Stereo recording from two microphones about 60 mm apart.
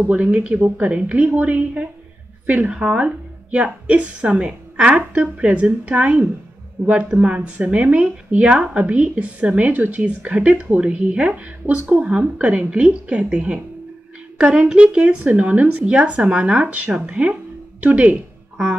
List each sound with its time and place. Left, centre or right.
0.0 s a woman's voice: right